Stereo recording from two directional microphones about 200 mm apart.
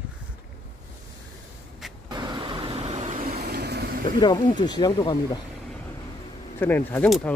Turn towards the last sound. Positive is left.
turn(degrees=10)  # may be behind; listen again after turning